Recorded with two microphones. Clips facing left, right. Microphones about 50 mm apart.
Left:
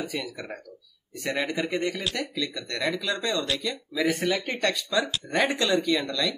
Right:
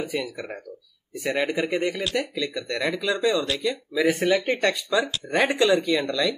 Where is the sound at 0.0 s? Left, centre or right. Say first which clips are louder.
Right 4 dB; centre.